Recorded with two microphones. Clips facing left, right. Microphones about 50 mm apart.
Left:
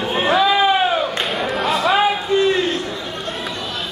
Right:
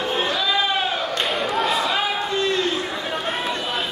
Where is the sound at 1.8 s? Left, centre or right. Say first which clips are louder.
Left 6 dB; centre.